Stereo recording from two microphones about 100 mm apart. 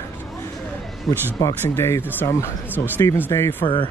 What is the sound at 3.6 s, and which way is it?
Speech, 60° left (ahead or behind).